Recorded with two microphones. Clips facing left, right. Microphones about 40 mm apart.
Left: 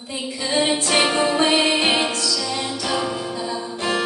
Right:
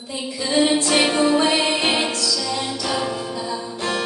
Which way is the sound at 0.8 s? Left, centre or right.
Centre.